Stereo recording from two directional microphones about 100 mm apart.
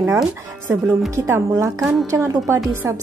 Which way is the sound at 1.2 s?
25° right (ahead or behind).